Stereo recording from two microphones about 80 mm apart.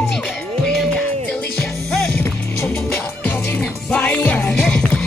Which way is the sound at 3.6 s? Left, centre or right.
Centre.